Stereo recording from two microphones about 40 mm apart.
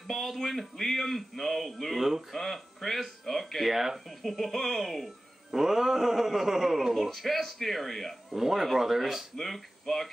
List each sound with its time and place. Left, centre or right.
0.1 s speech: centre
7.1 s speech: centre
9.4 s speech: centre